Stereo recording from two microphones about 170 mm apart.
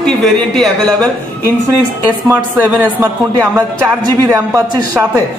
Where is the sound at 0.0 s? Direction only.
Centre (ahead or behind).